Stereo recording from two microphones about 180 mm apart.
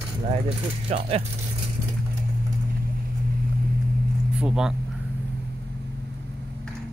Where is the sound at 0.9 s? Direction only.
30° right (ahead or behind).